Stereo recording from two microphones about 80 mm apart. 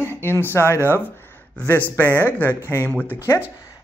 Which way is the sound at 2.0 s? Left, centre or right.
Centre.